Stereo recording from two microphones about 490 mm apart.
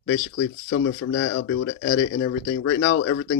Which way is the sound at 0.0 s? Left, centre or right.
Left.